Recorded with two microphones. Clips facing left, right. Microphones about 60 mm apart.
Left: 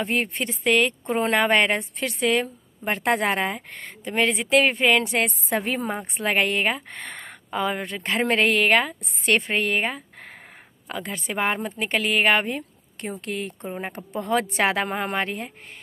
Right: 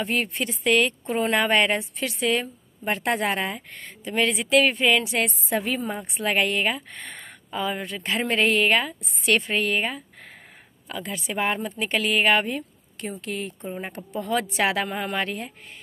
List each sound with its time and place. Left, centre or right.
0.0 s a woman's voice: left
14.9 s speech: left
15.1 s a woman's voice: left